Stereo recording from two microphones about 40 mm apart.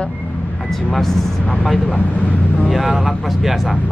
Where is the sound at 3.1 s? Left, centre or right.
Centre.